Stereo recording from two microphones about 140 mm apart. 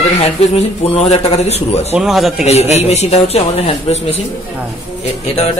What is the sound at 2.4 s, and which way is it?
A man's voice, 50° left (ahead or behind).